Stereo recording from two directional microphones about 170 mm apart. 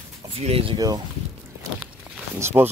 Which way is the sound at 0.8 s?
20° right (ahead or behind).